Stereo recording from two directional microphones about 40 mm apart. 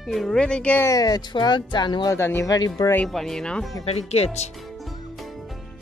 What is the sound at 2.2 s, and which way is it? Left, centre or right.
Speech, left.